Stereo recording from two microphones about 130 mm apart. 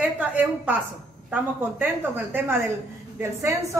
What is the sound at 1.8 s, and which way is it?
A woman's voice, 15° right (ahead or behind).